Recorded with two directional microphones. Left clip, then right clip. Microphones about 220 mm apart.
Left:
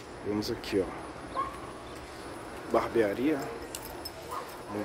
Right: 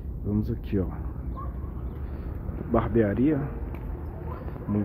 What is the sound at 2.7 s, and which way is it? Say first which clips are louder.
Speech: right 2 dB; centre (ahead or behind).